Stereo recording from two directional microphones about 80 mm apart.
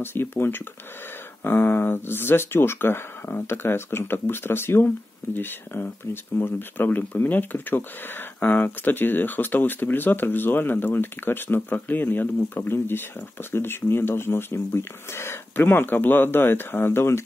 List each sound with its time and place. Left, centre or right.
0.0 s speech: left